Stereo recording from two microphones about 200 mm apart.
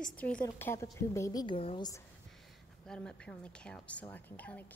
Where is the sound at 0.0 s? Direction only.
5° left (ahead or behind); by 1.9 s 25° left (ahead or behind).